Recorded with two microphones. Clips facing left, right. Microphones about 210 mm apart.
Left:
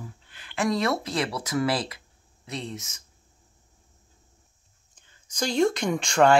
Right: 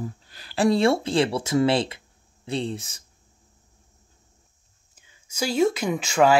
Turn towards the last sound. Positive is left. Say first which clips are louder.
# right 1 dB
turn(degrees=-5)  # may be behind; listen again after turning